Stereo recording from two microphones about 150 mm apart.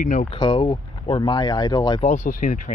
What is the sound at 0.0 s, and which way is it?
Speech, 60° left (ahead or behind).